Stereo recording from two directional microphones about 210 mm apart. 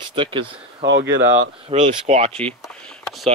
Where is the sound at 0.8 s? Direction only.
60° right (ahead or behind).